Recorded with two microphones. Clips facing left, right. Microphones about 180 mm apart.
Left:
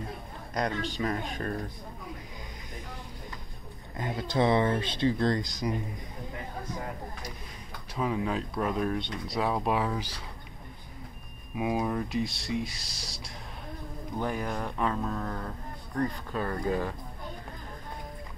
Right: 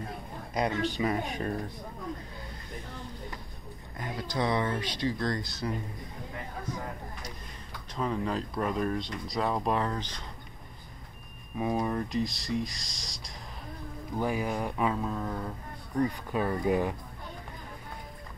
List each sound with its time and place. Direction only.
0.6 s speech: 10° right (ahead or behind)
3.9 s speech: 25° left (ahead or behind)
7.9 s speech: 5° left (ahead or behind)
11.5 s speech: 5° left (ahead or behind)
14.1 s speech: 5° right (ahead or behind)